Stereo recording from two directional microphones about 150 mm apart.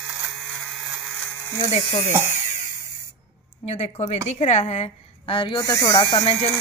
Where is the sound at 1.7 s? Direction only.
45° left (ahead or behind).